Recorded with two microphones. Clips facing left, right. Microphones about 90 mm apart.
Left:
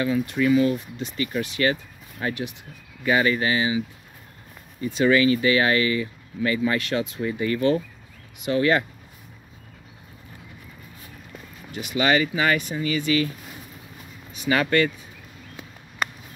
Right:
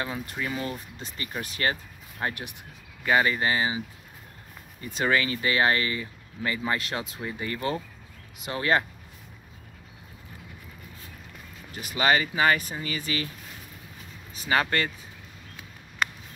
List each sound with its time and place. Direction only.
0.0 s speech: 30° right (ahead or behind)
4.9 s speech: 40° right (ahead or behind)
11.7 s speech: 35° right (ahead or behind)
14.3 s speech: 30° right (ahead or behind)